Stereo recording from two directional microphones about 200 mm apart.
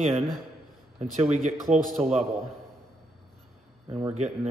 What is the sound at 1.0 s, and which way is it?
A man's voice, 35° right (ahead or behind).